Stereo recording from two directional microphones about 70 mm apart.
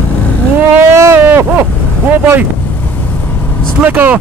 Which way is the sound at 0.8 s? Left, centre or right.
Right.